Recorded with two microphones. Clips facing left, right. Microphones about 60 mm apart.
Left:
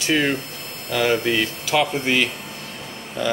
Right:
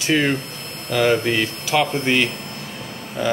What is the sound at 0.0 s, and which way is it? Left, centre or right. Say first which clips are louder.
Speech: right 1 dB; centre.